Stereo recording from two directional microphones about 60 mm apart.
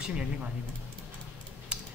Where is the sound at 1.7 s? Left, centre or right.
Centre.